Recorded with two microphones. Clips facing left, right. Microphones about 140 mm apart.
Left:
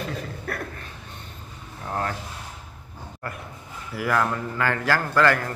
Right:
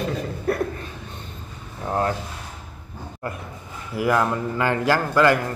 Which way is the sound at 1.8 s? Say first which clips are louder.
Right 5 dB; 25° right (ahead or behind).